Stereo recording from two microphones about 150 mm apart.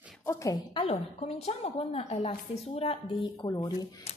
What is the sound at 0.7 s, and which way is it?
A woman's voice, 45° left (ahead or behind).